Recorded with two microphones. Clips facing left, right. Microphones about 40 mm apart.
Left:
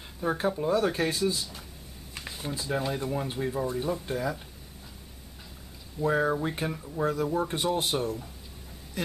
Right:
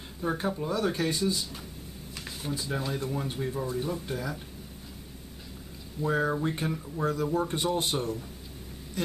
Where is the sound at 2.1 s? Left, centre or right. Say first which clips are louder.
Even; centre.